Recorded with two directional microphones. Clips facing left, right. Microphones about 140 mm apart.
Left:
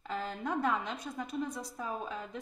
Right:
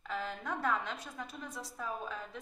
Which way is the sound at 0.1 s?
20° left (ahead or behind).